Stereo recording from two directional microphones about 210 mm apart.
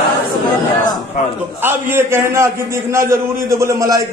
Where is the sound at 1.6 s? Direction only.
10° right (ahead or behind).